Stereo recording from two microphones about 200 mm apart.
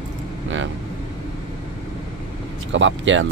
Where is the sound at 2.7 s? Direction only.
70° right (ahead or behind).